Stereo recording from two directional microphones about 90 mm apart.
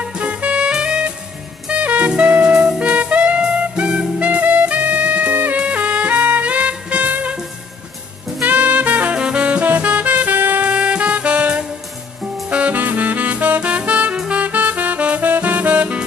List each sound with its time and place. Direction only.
0.1 s music: 15° right (ahead or behind)
8.5 s music: 15° right (ahead or behind)
12.4 s saxophone: 15° right (ahead or behind)